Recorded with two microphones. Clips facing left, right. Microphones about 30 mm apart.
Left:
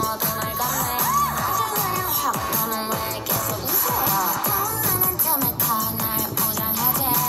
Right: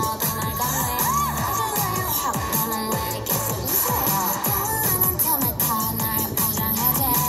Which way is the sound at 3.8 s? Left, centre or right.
Left.